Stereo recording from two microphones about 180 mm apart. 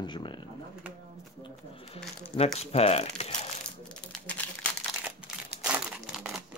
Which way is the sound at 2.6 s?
35° left (ahead or behind).